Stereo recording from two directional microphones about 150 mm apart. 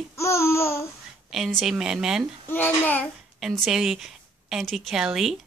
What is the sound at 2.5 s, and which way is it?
Speech, 10° left (ahead or behind).